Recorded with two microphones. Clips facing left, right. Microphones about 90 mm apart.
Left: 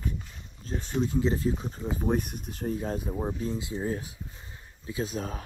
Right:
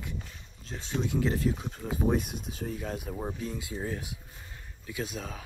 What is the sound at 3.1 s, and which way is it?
Speech, 10° left (ahead or behind).